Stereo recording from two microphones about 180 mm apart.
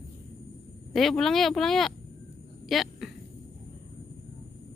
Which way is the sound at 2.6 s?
Centre (ahead or behind).